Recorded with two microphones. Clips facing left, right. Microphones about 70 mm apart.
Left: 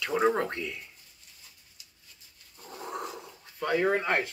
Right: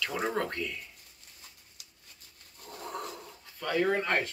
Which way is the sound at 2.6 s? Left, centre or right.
Centre.